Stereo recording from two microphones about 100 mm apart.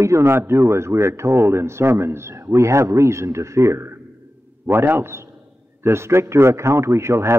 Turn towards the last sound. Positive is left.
turn(degrees=-25)  # may be behind; listen again after turning